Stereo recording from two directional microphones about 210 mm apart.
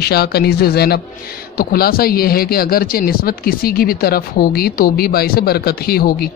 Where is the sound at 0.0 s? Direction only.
50° left (ahead or behind).